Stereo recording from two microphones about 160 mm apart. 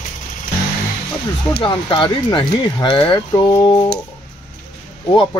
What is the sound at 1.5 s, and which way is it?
Speech, 30° left (ahead or behind).